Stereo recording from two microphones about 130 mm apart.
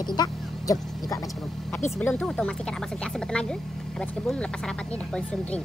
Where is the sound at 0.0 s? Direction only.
35° left (ahead or behind).